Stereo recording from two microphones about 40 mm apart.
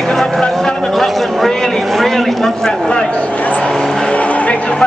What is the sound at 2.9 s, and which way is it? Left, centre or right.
Speech, left.